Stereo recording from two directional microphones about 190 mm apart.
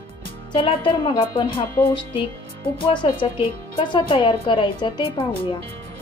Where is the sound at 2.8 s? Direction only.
25° left (ahead or behind).